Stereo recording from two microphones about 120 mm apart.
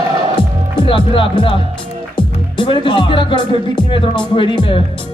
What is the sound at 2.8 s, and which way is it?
Speech, 45° left (ahead or behind).